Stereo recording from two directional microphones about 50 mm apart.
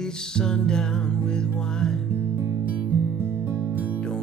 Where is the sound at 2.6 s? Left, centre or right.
Right.